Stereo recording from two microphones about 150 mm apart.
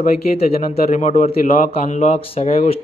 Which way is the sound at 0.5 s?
45° left (ahead or behind).